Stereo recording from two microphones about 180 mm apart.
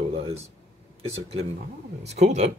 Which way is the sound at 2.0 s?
40° right (ahead or behind).